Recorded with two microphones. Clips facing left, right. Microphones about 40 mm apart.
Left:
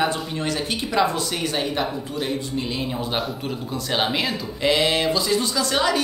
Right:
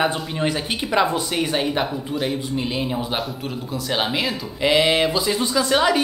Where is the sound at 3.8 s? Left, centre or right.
Centre.